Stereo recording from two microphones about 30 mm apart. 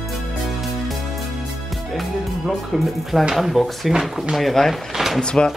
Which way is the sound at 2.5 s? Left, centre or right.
Centre.